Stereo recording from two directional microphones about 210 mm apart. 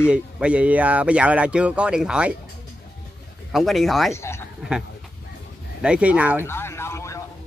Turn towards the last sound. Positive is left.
turn(degrees=15)  # may be behind; listen again after turning